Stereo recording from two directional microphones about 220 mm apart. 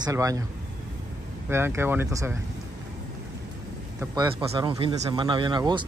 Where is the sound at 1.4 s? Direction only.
10° right (ahead or behind).